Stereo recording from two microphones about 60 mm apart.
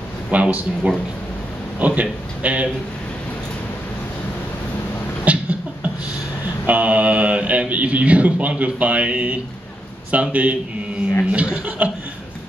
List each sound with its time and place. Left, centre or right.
0.3 s speech: right
5.2 s a sound: right
6.6 s speech: right